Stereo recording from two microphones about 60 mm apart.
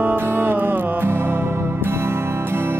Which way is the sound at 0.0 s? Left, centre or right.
Right.